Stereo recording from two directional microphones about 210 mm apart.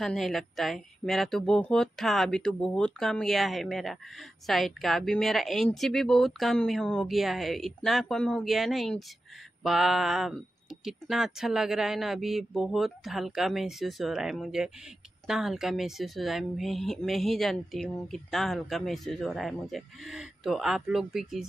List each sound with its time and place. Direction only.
0.0 s speech: centre (ahead or behind)